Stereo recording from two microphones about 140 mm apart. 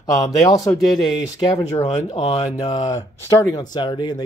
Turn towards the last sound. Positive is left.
turn(degrees=30)  # may be behind; listen again after turning